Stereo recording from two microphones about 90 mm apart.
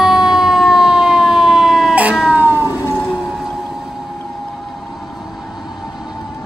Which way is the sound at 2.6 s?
30° left (ahead or behind).